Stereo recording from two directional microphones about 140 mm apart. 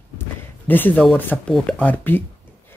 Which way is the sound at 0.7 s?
15° left (ahead or behind).